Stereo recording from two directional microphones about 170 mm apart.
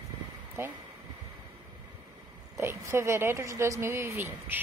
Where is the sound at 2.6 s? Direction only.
15° right (ahead or behind).